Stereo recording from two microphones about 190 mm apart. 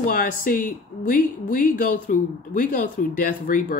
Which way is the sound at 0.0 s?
45° left (ahead or behind).